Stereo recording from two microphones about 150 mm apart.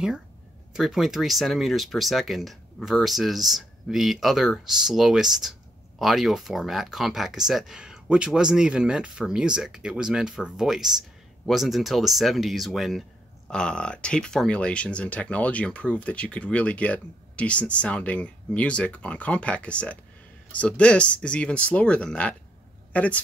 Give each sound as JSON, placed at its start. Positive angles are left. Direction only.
{"t": 0.7, "sound": "speech", "side_deg": 0}